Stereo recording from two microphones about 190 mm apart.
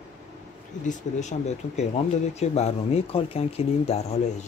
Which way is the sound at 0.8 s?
40° left (ahead or behind).